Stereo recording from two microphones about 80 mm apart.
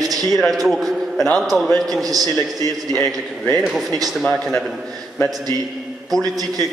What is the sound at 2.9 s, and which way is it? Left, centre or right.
A woman's voice, centre.